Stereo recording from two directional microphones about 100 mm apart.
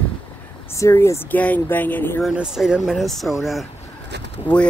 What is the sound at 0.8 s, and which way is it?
Speech, 30° left (ahead or behind).